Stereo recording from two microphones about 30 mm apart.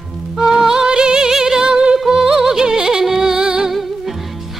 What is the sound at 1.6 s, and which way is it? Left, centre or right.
Music, right.